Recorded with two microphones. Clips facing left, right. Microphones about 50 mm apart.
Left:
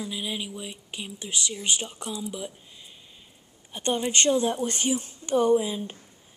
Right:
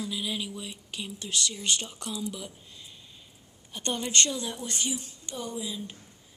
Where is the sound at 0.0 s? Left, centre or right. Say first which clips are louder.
Left 1 dB; centre.